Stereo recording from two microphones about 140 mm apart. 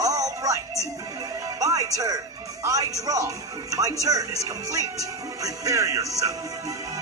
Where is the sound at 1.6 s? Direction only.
25° right (ahead or behind).